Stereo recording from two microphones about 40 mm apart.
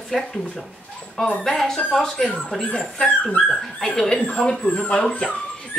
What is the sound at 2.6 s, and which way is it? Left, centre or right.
Speech, centre.